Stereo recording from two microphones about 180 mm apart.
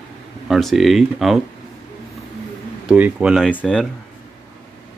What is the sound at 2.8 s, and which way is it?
Speech, 10° right (ahead or behind).